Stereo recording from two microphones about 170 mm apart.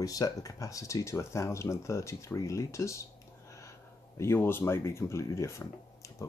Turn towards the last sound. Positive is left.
turn(degrees=15)  # may be behind; listen again after turning